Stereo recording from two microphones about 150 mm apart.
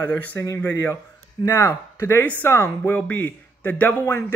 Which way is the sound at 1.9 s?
15° left (ahead or behind).